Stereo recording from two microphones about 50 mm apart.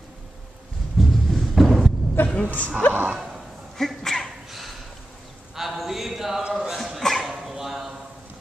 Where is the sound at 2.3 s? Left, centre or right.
Left.